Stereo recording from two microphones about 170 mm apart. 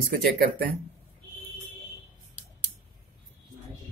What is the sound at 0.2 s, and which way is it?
Speech, 60° right (ahead or behind).